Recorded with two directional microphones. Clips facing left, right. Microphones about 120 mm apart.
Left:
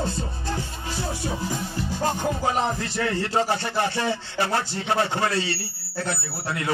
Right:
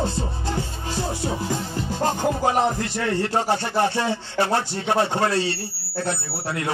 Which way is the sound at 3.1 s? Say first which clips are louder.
Right 2 dB; 35° right (ahead or behind).